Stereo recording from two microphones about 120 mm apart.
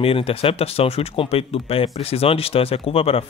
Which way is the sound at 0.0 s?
50° left (ahead or behind).